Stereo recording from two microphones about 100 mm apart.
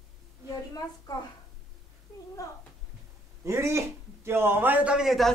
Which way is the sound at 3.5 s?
30° right (ahead or behind).